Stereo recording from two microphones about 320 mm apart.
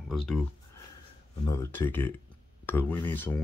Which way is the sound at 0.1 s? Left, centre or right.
Centre.